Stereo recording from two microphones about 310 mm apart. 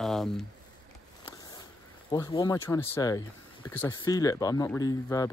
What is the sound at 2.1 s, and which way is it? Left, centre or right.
Speech, centre.